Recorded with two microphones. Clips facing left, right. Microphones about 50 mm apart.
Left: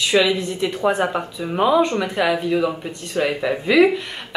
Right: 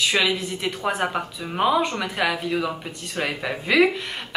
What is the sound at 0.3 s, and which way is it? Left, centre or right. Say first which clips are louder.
Speech: left 4 dB; centre.